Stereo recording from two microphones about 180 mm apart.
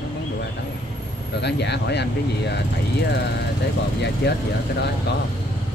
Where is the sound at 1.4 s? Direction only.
70° left (ahead or behind).